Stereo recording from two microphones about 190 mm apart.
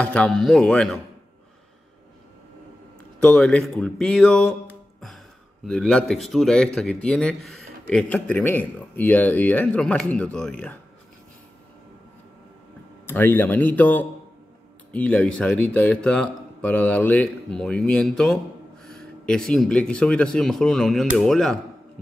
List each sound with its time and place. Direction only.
0.0 s speech: 5° left (ahead or behind)
3.2 s speech: 5° left (ahead or behind)
13.0 s a man's voice: 10° left (ahead or behind)